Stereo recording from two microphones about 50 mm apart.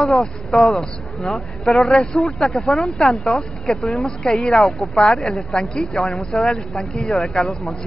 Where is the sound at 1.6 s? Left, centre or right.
Centre.